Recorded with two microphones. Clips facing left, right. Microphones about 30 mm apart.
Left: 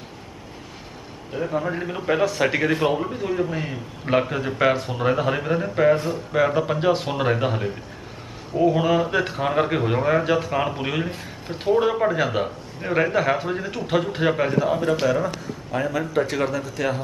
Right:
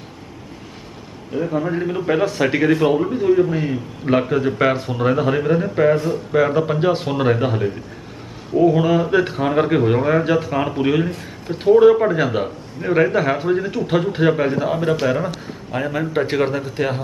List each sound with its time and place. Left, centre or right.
1.3 s a man's voice: centre
14.6 s a man's voice: centre